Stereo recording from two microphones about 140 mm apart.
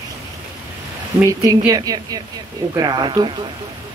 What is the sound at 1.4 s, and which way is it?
Speech, 25° right (ahead or behind).